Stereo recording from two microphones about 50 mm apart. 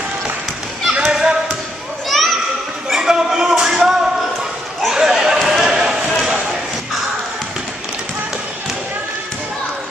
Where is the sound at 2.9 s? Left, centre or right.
Centre.